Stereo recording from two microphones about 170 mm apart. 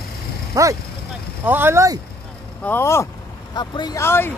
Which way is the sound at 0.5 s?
20° right (ahead or behind).